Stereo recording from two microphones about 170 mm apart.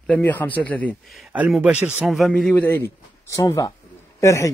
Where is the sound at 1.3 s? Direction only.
5° right (ahead or behind).